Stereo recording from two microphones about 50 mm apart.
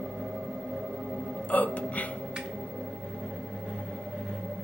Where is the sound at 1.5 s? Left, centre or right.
Left.